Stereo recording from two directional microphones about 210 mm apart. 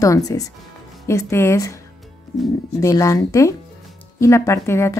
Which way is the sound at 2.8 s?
15° left (ahead or behind).